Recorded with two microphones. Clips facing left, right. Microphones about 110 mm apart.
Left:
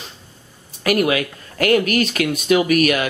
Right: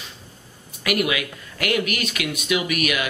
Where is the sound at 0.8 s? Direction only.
40° left (ahead or behind).